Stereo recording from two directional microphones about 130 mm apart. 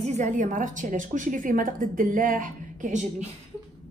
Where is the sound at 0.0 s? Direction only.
65° right (ahead or behind).